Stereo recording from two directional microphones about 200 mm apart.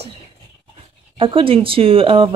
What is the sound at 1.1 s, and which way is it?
Speech, 25° right (ahead or behind).